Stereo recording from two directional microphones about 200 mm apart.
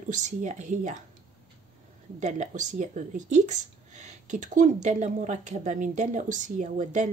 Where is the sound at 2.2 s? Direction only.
35° right (ahead or behind).